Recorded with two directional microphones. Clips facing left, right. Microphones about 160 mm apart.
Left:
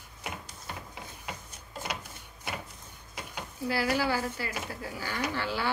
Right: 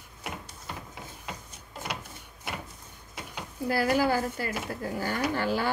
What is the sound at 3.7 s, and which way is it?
Speech, 50° right (ahead or behind).